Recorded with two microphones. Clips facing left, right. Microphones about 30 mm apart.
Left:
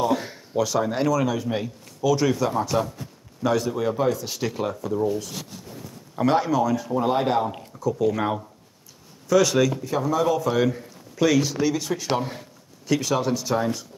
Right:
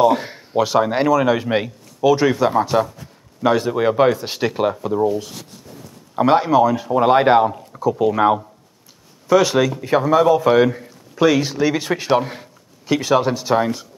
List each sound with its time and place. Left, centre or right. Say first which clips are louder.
0.0 s a man's voice: right 8 dB; right
6.1 s speech: right 7 dB; right
7.0 s speech: right 10 dB; right
9.8 s speech: right 8 dB; right
10.5 s speech: right 8 dB; right
12.2 s speech: right 6 dB; right